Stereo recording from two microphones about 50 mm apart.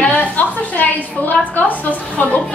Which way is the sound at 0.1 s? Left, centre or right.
Left.